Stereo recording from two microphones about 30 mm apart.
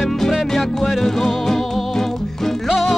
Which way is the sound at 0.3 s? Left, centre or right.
Centre.